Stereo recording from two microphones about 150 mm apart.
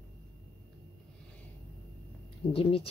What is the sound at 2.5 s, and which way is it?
Speech, 35° left (ahead or behind).